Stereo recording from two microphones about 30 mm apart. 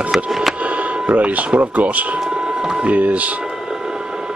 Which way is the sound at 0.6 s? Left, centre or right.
Right.